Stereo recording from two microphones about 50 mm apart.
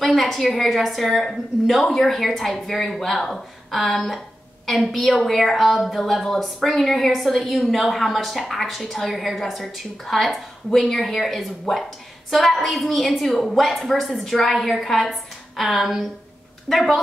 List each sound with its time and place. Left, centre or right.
0.0 s a woman's voice: centre